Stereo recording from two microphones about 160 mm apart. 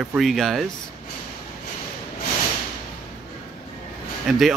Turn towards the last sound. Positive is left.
turn(degrees=0)  # may be behind; listen again after turning